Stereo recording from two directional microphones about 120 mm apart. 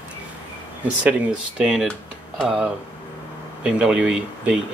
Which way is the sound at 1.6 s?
5° right (ahead or behind).